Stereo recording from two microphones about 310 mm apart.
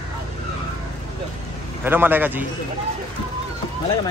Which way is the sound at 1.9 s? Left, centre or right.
Centre.